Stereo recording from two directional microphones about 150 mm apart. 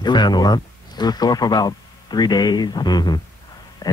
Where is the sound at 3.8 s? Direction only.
25° left (ahead or behind).